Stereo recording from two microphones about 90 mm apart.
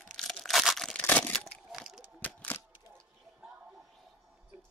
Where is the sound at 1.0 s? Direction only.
15° left (ahead or behind).